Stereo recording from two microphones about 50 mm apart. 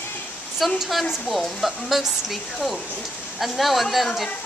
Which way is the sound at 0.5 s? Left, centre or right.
Centre.